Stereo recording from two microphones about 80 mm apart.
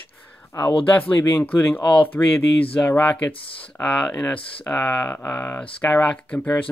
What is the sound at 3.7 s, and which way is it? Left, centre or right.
Speech, centre.